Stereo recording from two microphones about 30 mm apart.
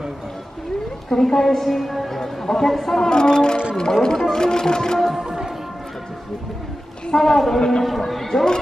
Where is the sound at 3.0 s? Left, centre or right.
Left.